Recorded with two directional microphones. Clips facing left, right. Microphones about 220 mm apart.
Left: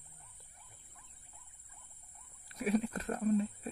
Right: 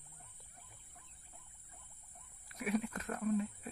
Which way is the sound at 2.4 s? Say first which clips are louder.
Left 4 dB; 30° left (ahead or behind).